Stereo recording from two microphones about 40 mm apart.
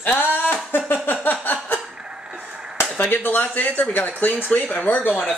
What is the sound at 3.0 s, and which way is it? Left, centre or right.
Speech, left.